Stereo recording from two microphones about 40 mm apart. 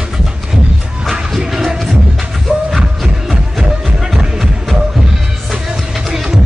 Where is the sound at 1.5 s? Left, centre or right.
Centre.